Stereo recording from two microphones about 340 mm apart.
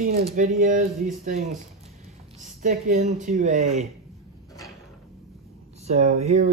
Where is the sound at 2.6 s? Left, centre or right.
Right.